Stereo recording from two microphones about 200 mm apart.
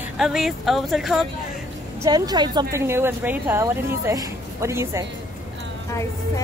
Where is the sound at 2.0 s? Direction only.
20° right (ahead or behind).